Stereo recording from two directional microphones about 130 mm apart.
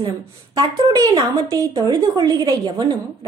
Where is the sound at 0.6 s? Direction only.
35° right (ahead or behind).